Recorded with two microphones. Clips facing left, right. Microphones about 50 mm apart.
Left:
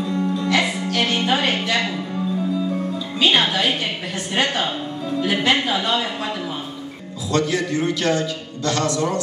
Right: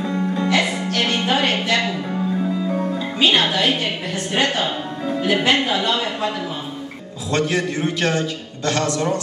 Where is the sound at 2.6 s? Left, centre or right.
Right.